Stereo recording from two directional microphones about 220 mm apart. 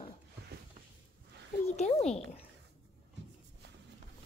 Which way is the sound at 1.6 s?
30° left (ahead or behind).